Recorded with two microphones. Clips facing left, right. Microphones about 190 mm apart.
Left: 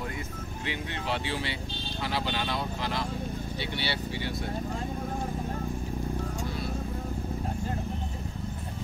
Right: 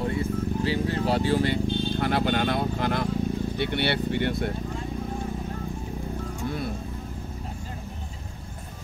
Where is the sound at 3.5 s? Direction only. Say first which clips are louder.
Right 6 dB; 55° right (ahead or behind).